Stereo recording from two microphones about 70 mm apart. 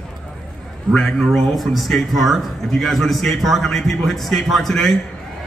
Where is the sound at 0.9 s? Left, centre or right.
Centre.